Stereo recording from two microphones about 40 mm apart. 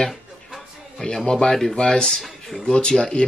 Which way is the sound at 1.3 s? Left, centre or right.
Centre.